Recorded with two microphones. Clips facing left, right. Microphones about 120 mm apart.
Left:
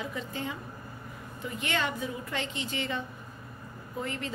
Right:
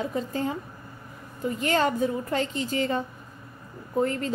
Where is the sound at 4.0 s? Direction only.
40° right (ahead or behind).